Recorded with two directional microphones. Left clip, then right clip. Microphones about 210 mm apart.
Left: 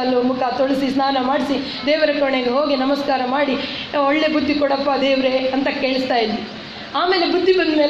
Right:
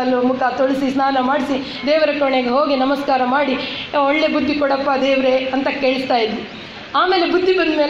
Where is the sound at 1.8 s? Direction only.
25° right (ahead or behind).